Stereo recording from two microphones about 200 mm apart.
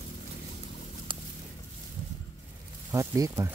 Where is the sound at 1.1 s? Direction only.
25° right (ahead or behind).